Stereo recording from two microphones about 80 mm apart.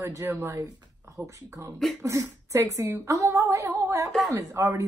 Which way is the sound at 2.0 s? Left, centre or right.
Right.